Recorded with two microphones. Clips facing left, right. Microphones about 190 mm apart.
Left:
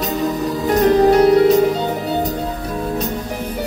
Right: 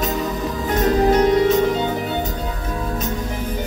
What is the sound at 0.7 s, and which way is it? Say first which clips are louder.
Music: left 4 dB; 35° left (ahead or behind).